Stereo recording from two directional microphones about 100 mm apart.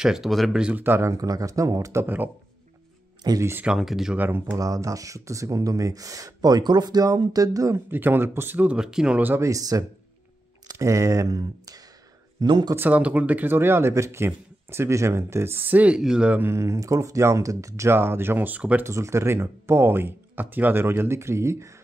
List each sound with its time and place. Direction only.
0.0 s speech: 5° right (ahead or behind); by 1.1 s 20° right (ahead or behind)
1.1 s speech: 35° right (ahead or behind)
2.0 s speech: 20° right (ahead or behind)
3.3 s speech: 30° right (ahead or behind)
3.6 s speech: 5° right (ahead or behind)
4.2 s speech: 20° right (ahead or behind)
4.6 s speech: 35° right (ahead or behind)
7.9 s speech: 20° right (ahead or behind)
9.4 s speech: 35° right (ahead or behind)
12.7 s speech: 15° right (ahead or behind)
18.9 s speech: 30° right (ahead or behind)